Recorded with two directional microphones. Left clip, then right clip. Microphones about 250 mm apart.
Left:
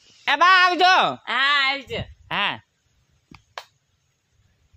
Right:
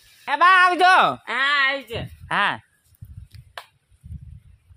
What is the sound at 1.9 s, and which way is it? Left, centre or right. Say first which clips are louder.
Speech: left 1 dB; right.